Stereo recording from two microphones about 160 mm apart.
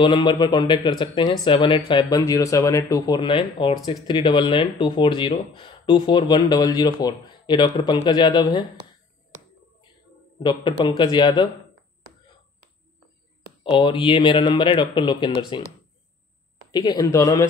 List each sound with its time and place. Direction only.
0.0 s speech: 30° left (ahead or behind)
10.9 s speech: 30° left (ahead or behind)
13.7 s speech: 30° left (ahead or behind)
16.7 s speech: 25° left (ahead or behind)